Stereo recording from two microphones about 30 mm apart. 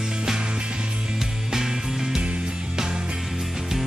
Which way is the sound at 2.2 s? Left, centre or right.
Right.